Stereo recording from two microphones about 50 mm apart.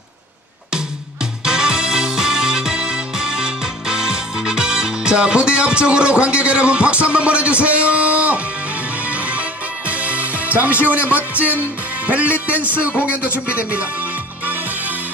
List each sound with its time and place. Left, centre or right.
1.4 s music: centre; by 11.2 s right
12.4 s a man's voice: right
14.4 s music: right